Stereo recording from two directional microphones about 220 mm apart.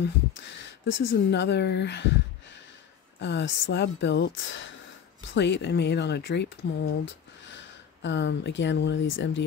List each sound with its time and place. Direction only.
0.0 s speech: 55° left (ahead or behind)